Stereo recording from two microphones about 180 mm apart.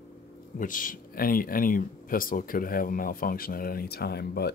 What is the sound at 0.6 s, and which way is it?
Speech, 50° left (ahead or behind).